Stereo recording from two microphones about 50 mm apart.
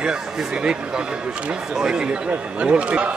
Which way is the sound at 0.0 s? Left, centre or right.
Centre.